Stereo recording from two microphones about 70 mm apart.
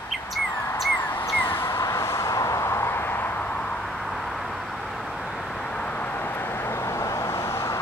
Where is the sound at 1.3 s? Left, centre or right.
Left.